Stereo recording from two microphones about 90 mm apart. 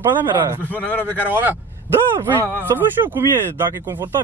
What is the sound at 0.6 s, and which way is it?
Speech, 20° left (ahead or behind).